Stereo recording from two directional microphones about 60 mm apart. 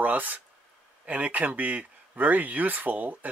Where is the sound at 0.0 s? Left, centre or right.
Right.